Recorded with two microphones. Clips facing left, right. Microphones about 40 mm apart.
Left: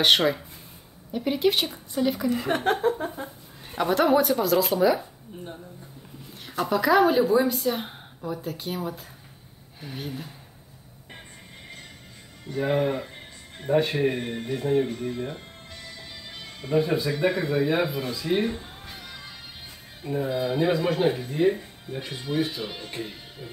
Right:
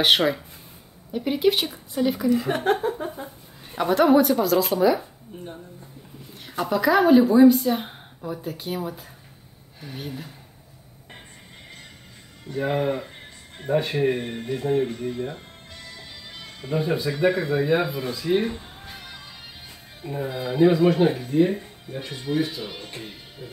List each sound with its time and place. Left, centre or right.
0.0 s a woman's voice: centre
2.2 s speech: left
3.7 s a woman's voice: centre
12.4 s a woman's voice: centre
16.6 s a woman's voice: centre
20.0 s a woman's voice: centre